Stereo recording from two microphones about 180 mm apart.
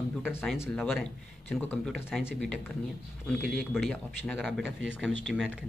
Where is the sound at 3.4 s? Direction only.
Centre (ahead or behind).